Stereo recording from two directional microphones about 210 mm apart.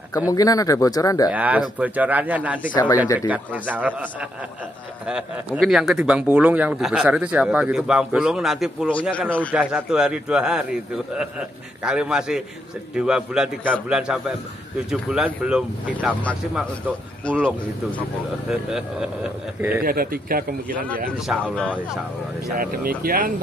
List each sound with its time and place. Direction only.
0.1 s speech: 15° left (ahead or behind)
1.3 s speech: 5° right (ahead or behind)
2.7 s speech: 20° left (ahead or behind)
3.2 s speech: 5° right (ahead or behind)
19.8 s a man's voice: 45° right (ahead or behind)
21.3 s speech: centre (ahead or behind)
22.6 s a man's voice: 45° right (ahead or behind)